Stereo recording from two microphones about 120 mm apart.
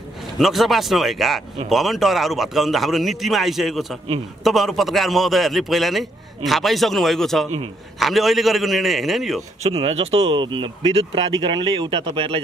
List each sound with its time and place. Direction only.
0.4 s a man's voice: centre (ahead or behind)
9.6 s speech: 55° right (ahead or behind)